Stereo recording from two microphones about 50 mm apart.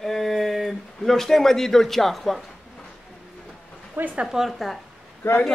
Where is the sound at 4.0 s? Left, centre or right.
Right.